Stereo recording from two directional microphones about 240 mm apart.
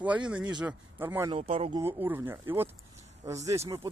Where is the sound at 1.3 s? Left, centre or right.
Right.